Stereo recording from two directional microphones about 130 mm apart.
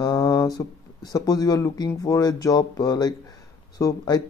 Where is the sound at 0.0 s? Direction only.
30° left (ahead or behind).